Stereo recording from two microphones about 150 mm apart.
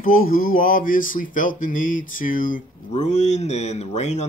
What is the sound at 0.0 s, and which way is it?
Speech, 70° left (ahead or behind).